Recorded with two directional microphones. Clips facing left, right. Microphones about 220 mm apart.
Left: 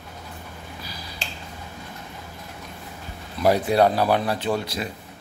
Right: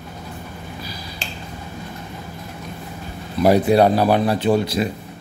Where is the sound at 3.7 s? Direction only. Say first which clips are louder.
Right 3 dB; 30° right (ahead or behind).